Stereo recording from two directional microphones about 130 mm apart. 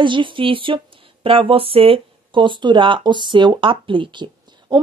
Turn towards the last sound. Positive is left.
turn(degrees=-35)  # may be behind; listen again after turning